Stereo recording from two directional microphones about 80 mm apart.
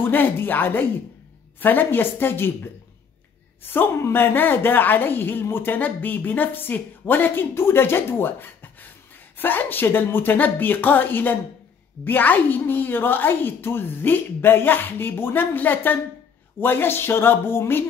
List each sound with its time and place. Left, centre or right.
0.0 s a woman's voice: left